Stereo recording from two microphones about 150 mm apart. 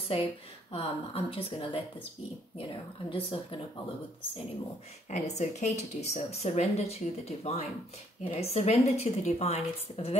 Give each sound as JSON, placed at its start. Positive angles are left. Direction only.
{"t": 0.1, "sound": "speech", "side_deg": 40}
{"t": 5.1, "sound": "speech", "side_deg": 50}